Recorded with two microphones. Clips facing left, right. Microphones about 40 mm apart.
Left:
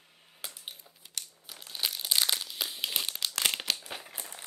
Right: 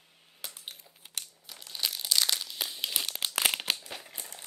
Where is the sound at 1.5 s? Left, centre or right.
Centre.